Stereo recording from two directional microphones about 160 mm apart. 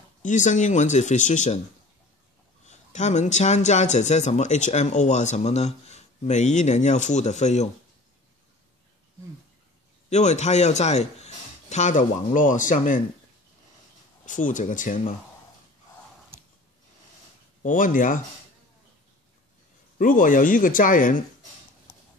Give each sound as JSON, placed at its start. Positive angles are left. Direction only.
{"t": 0.2, "sound": "speech", "side_deg": 50}
{"t": 2.6, "sound": "speech", "side_deg": 45}
{"t": 10.0, "sound": "speech", "side_deg": 45}
{"t": 14.2, "sound": "speech", "side_deg": 55}
{"t": 17.6, "sound": "speech", "side_deg": 55}
{"t": 20.0, "sound": "speech", "side_deg": 55}